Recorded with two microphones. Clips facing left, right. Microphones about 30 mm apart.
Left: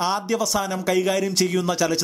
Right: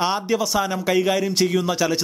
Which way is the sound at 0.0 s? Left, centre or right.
Centre.